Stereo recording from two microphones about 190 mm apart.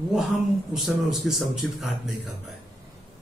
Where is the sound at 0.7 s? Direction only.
Centre (ahead or behind).